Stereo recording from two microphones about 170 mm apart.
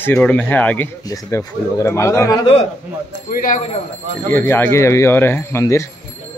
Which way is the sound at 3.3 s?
50° left (ahead or behind).